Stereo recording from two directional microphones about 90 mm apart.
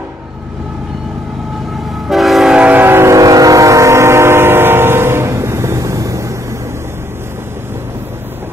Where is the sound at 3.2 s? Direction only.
40° right (ahead or behind).